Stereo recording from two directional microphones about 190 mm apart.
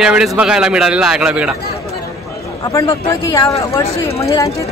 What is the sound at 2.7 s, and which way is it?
A woman's voice, 20° left (ahead or behind).